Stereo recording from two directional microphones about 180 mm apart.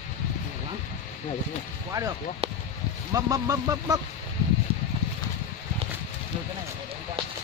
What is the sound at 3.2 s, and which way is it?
Speech, 20° right (ahead or behind).